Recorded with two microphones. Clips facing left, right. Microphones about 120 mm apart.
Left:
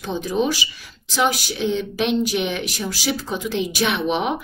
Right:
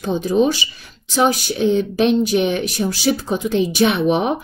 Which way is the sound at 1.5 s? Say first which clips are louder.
Right 6 dB; 45° right (ahead or behind).